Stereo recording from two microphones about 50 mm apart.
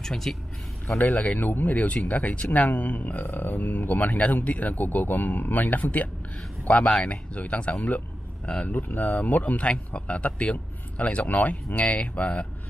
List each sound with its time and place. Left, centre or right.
0.0 s speech: centre
0.8 s speech: left